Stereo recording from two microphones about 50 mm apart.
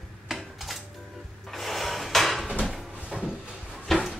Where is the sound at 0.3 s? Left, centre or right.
Centre.